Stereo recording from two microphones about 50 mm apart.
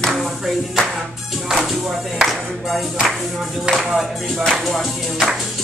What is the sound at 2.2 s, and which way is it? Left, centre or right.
Music, centre.